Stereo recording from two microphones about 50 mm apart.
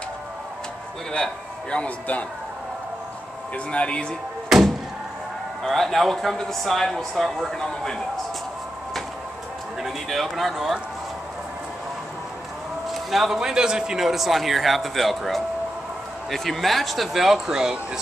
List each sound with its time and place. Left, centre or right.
1.1 s a man's voice: centre
3.5 s speech: left
4.5 s thump: centre
5.6 s a man's voice: centre
7.5 s a man's voice: centre
9.8 s a man's voice: centre
12.9 s a man's voice: centre